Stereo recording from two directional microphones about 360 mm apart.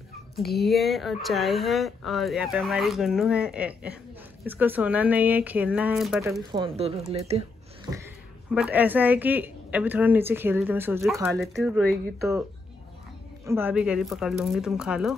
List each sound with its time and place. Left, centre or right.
0.4 s a woman's voice: centre
6.5 s speech: centre
8.7 s a woman's voice: centre
13.5 s a woman's voice: centre